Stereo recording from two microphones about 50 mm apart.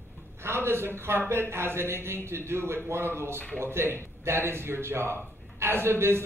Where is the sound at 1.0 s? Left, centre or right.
Right.